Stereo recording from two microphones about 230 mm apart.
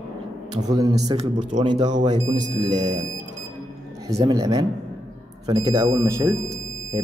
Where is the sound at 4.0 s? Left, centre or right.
Centre.